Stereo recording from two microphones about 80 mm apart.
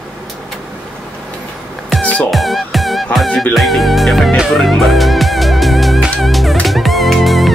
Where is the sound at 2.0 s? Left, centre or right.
Centre.